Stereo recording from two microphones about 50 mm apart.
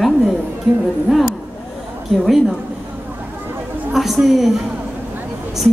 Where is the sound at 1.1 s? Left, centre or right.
Centre.